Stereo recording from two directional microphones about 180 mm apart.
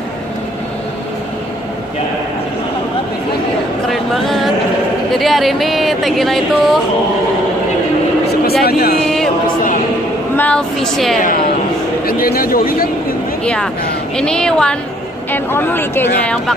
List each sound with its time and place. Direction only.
3.9 s a sound: centre (ahead or behind)
5.1 s speech: centre (ahead or behind)
8.6 s speech: 60° left (ahead or behind)
9.0 s a sound: centre (ahead or behind)
10.3 s speech: 5° left (ahead or behind)
12.1 s speech: 55° left (ahead or behind)
13.4 s speech: 5° left (ahead or behind)